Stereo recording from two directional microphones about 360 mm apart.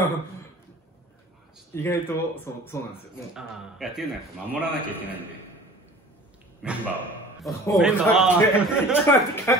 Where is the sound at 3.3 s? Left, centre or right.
Centre.